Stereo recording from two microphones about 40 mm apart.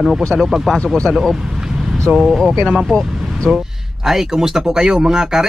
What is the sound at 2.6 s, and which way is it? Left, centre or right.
Speech, centre.